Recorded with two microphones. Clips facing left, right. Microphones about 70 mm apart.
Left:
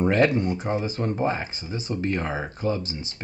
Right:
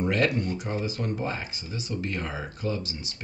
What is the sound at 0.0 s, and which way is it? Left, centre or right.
Speech, left.